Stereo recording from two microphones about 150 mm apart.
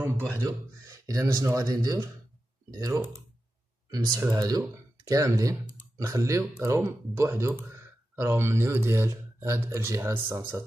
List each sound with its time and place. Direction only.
0.4 s speech: 20° right (ahead or behind)